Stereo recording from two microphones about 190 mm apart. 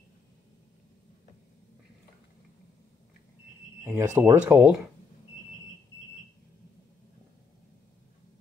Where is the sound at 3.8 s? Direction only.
15° right (ahead or behind).